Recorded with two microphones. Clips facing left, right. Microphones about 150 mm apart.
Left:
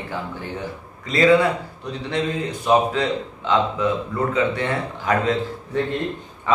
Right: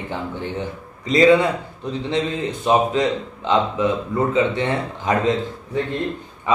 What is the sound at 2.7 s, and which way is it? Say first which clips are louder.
Speech: right 1 dB; 20° right (ahead or behind).